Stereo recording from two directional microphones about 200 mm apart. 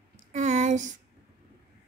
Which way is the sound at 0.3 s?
35° right (ahead or behind).